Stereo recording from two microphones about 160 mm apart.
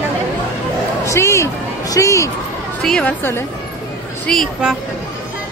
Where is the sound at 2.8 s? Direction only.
5° left (ahead or behind).